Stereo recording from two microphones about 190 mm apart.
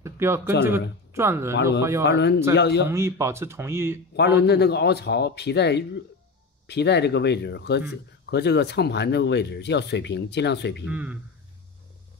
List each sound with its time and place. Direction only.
0.0 s a sound: 15° right (ahead or behind)
0.7 s speech: 15° right (ahead or behind)
2.0 s speech: 60° left (ahead or behind)
2.9 s speech: 15° right (ahead or behind)
4.1 s speech: 60° left (ahead or behind)
10.9 s speech: 5° right (ahead or behind)